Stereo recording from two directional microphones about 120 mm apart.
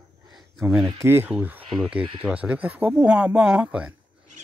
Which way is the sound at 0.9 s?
20° right (ahead or behind).